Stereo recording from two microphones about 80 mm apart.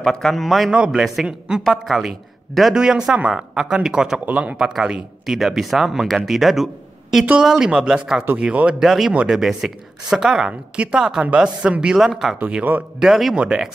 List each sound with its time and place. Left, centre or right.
0.0 s speech: centre
0.7 s a man's voice: centre
12.4 s a man's voice: centre
13.0 s speech: centre